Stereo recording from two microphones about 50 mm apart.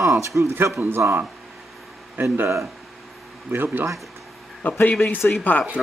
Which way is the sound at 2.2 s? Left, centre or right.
Right.